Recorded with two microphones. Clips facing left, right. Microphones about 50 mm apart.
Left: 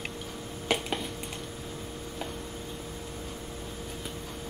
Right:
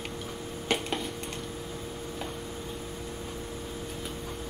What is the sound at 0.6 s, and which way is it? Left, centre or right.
Finger snapping, centre.